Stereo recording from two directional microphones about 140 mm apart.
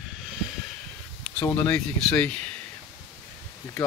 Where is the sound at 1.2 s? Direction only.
10° left (ahead or behind).